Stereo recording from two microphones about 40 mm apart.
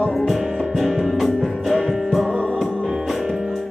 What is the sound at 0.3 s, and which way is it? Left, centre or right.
Music, centre.